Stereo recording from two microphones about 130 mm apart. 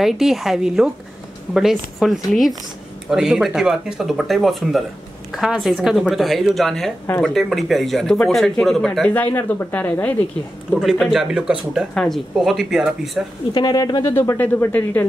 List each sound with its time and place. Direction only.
0.0 s speech: centre (ahead or behind); by 10.1 s 15° left (ahead or behind)
10.7 s speech: 5° right (ahead or behind)
13.5 s speech: 30° left (ahead or behind)
14.1 s speech: 20° left (ahead or behind)